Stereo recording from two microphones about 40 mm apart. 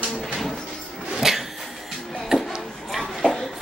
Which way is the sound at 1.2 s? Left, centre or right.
Centre.